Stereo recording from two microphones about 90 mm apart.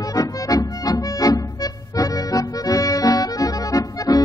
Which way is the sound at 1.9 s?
40° left (ahead or behind).